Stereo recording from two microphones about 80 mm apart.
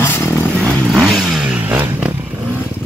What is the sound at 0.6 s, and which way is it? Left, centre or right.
Vehicle, centre.